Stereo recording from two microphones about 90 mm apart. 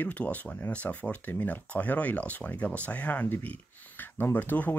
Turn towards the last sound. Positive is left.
turn(degrees=20)  # may be behind; listen again after turning